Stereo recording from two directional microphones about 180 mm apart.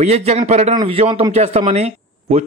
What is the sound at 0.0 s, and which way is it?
A man's voice, 35° right (ahead or behind).